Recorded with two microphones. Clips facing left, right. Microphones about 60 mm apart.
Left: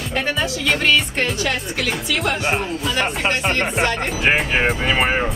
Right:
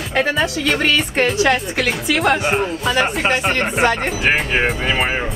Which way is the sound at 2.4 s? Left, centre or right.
Centre.